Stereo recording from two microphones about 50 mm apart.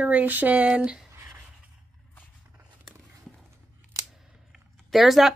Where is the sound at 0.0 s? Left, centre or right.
Right.